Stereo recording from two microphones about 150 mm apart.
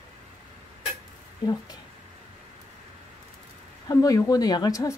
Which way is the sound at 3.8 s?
25° left (ahead or behind).